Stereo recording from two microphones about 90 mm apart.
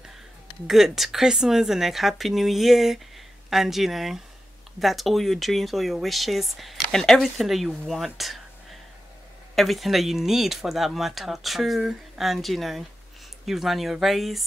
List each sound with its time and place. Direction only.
0.7 s speech: centre (ahead or behind)
9.6 s speech: centre (ahead or behind)